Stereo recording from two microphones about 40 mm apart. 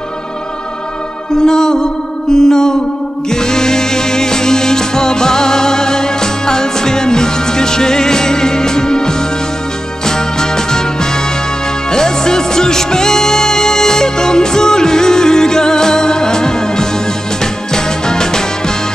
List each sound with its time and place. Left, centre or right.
1.4 s music: centre